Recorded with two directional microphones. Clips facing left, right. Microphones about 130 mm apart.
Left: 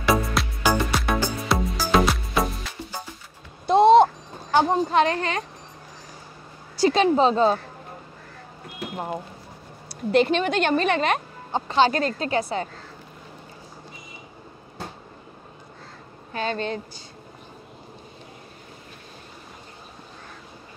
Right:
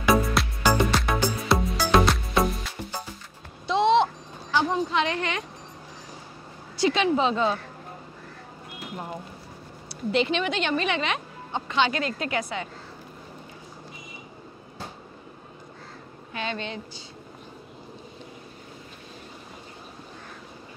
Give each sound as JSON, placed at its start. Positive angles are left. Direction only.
{"t": 0.1, "sound": "music", "side_deg": 0}
{"t": 3.6, "sound": "a sound", "side_deg": 45}
{"t": 6.8, "sound": "speech", "side_deg": 40}
{"t": 9.8, "sound": "speech", "side_deg": 45}
{"t": 16.3, "sound": "speech", "side_deg": 40}